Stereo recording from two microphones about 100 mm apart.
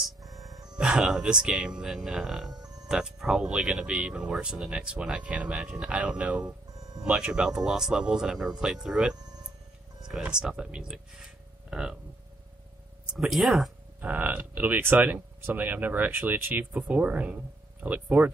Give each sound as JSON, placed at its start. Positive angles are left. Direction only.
{"t": 0.0, "sound": "music", "side_deg": 0}
{"t": 0.8, "sound": "speech", "side_deg": -5}
{"t": 13.0, "sound": "speech", "side_deg": -5}
{"t": 14.0, "sound": "speech", "side_deg": -15}